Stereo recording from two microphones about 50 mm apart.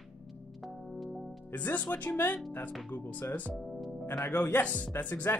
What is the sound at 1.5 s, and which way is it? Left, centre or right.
Speech, left.